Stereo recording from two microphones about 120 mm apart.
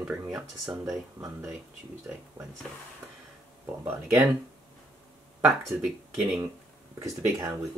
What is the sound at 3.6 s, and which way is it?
Speech, 20° right (ahead or behind).